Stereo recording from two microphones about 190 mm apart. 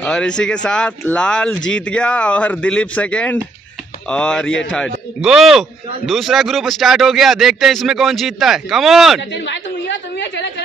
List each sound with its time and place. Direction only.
0.0 s a man's voice: 5° left (ahead or behind)
9.3 s chatter: 70° left (ahead or behind)